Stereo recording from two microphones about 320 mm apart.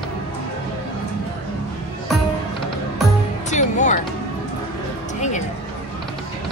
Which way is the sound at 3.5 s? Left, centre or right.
Left.